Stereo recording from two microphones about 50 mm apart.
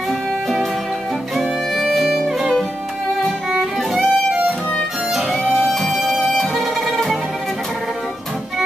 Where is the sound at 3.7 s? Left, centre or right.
Centre.